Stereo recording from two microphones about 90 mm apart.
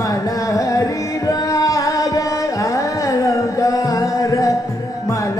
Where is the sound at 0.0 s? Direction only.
40° left (ahead or behind).